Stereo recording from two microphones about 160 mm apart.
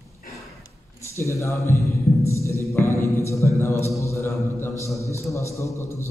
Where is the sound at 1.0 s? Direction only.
20° left (ahead or behind).